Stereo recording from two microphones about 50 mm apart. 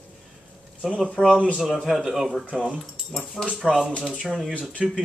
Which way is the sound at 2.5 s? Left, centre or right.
Right.